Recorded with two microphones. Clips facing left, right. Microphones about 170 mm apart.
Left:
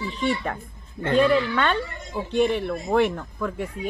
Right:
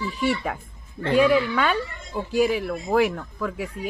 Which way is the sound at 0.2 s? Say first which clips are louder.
Even; 5° right (ahead or behind).